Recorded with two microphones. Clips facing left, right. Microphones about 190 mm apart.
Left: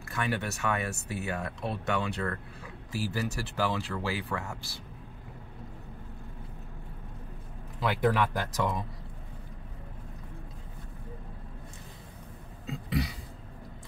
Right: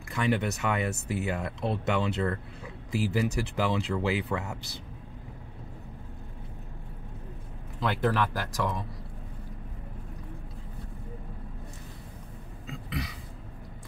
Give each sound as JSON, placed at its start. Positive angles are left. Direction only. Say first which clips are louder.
{"t": 0.1, "sound": "speech", "louder": "right 5 dB", "side_deg": -20}
{"t": 7.8, "sound": "speech", "louder": "even", "side_deg": 10}